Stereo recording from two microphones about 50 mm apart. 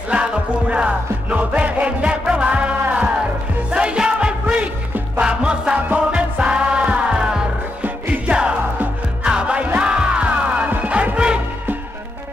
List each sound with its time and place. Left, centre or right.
0.1 s music: right